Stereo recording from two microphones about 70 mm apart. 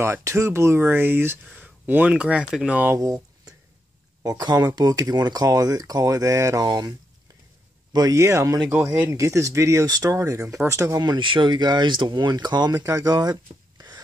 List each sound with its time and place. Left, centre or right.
0.0 s speech: right; by 2.9 s centre
3.0 s a sound: right
4.2 s speech: right
4.7 s speech: right
8.1 s speech: right
11.0 s speech: right
12.7 s speech: right
13.1 s a sound: right